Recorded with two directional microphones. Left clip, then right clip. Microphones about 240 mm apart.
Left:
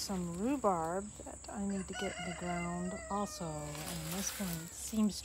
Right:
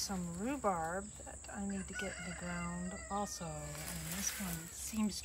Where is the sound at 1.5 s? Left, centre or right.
Centre.